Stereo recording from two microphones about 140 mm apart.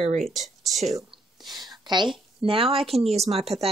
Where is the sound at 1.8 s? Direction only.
35° right (ahead or behind).